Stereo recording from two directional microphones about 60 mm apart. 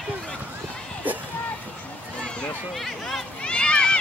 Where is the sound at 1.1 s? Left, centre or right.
Right.